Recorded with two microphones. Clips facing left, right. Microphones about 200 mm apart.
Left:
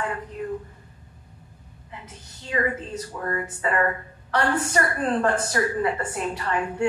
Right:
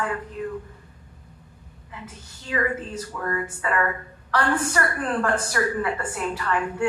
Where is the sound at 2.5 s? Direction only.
25° left (ahead or behind).